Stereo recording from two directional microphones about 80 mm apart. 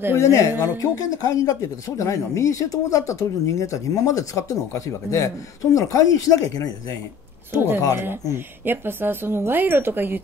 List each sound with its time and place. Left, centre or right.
0.2 s speech: left
7.5 s speech: right